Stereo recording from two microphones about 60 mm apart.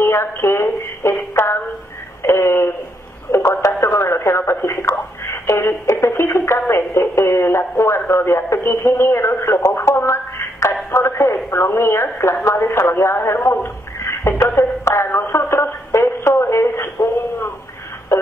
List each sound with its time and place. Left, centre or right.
0.0 s a man's voice: left